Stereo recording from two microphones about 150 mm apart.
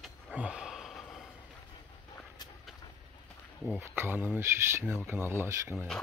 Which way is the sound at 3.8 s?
15° right (ahead or behind).